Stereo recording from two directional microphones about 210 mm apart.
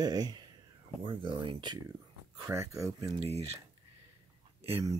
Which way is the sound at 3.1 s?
30° right (ahead or behind).